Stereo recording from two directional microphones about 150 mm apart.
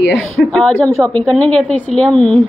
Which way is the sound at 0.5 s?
5° left (ahead or behind).